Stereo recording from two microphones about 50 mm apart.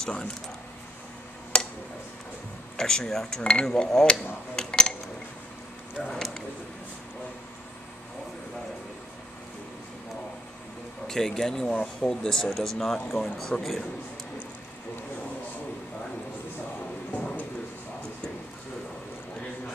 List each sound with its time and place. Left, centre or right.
0.0 s cutlery: centre
2.8 s cutlery: centre
4.6 s a sound: centre
6.1 s a sound: centre
11.1 s cutlery: centre
12.5 s speech: centre